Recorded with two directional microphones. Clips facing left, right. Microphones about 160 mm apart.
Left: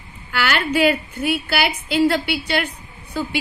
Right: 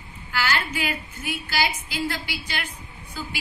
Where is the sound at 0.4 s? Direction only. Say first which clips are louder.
Left 8 dB; 70° left (ahead or behind).